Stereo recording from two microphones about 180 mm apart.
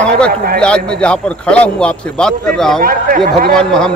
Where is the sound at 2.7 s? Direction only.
50° right (ahead or behind).